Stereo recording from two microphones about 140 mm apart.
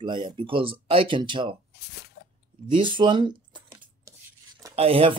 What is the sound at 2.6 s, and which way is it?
Speech, 35° right (ahead or behind).